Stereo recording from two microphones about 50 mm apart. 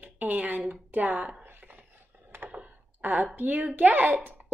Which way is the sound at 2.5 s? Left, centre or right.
Right.